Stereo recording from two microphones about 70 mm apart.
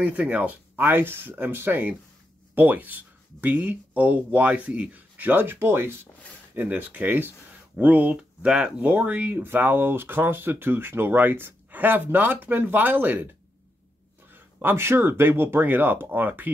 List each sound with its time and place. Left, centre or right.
0.0 s speech: right
14.3 s speech: right